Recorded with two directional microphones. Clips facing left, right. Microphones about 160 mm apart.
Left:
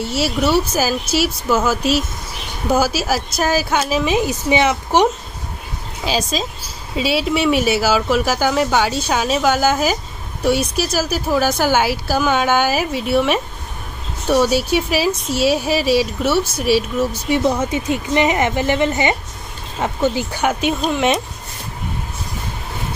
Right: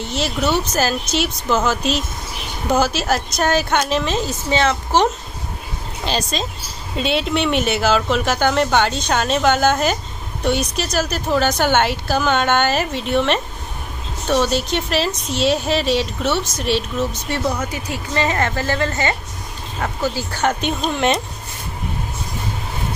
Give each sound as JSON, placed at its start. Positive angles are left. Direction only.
{"t": 0.1, "sound": "speech", "side_deg": 5}
{"t": 17.5, "sound": "speech", "side_deg": 25}